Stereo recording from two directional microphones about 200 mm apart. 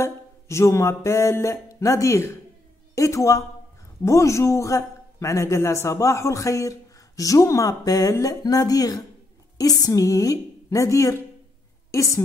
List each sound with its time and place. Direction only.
0.0 s a man's voice: 15° left (ahead or behind)